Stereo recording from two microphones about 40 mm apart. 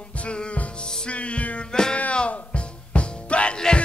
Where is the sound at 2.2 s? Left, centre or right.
Left.